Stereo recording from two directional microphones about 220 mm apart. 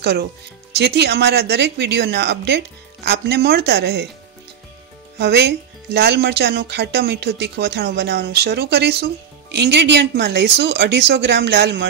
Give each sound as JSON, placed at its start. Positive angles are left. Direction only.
{"t": 0.0, "sound": "speech", "side_deg": -50}
{"t": 5.2, "sound": "speech", "side_deg": -50}